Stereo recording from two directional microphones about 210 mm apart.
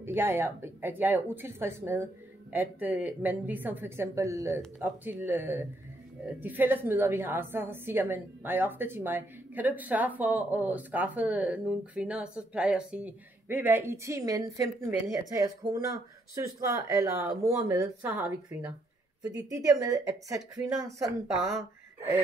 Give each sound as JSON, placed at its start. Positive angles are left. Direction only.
{"t": 0.0, "sound": "a woman's voice", "side_deg": -10}